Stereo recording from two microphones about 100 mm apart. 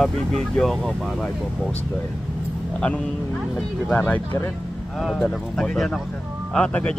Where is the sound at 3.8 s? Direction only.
15° left (ahead or behind).